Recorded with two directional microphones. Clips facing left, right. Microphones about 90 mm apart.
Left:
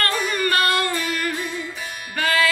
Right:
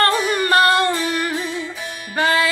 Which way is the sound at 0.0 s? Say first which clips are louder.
Right 5 dB; 30° right (ahead or behind).